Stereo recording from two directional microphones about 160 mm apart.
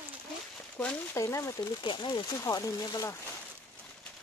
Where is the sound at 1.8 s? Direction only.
30° left (ahead or behind).